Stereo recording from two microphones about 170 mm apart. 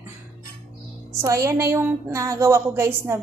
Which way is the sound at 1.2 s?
20° right (ahead or behind).